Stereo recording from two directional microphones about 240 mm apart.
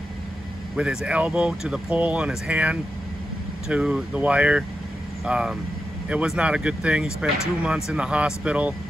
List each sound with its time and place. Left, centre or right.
0.7 s speech: centre